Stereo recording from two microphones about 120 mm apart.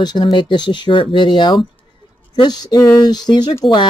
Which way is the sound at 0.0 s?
35° left (ahead or behind).